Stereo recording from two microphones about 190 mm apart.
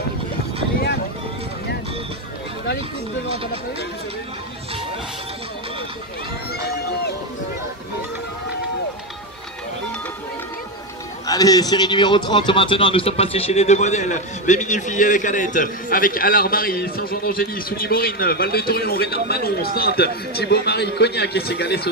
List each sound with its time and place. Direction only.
11.2 s a man's voice: 20° left (ahead or behind); by 21.8 s 60° left (ahead or behind)